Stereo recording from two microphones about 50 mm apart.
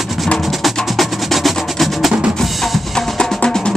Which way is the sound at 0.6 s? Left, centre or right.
Centre.